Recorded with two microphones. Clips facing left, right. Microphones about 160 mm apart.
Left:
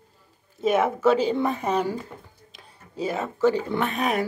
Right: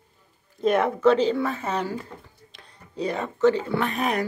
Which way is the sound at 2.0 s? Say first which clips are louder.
Left 1 dB; centre (ahead or behind).